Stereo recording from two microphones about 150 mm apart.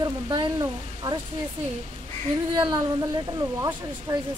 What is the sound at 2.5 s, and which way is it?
Speech, 30° right (ahead or behind).